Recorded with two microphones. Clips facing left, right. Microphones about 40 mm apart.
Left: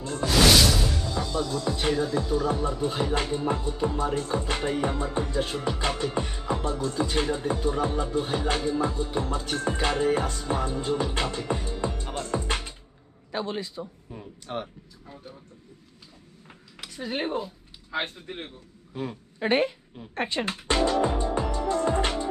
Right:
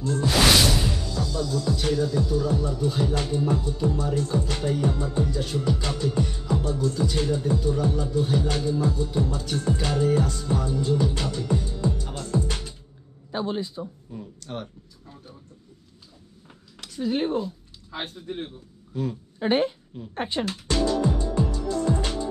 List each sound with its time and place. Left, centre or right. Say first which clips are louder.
0.2 s music: left 1 dB; centre
1.0 s music: even; left
14.1 s a sound: left 2 dB; centre
16.8 s speech: right 5 dB; centre
17.9 s speech: left 1 dB; left
18.9 s speech: right 3 dB; centre
20.4 s music: left 1 dB; left